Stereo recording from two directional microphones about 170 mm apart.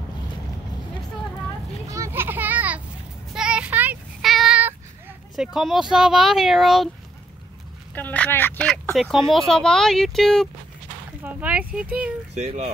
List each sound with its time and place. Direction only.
1.9 s children playing: 15° right (ahead or behind)
3.3 s child singing: 5° right (ahead or behind)
5.3 s speech: centre (ahead or behind)
7.9 s speech: 10° left (ahead or behind)
11.2 s speech: 10° right (ahead or behind)
12.4 s speech: 40° right (ahead or behind)